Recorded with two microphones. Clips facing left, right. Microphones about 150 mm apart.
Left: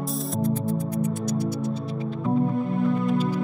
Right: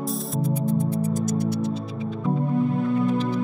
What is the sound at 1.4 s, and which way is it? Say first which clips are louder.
Music: right 2 dB; 65° right (ahead or behind).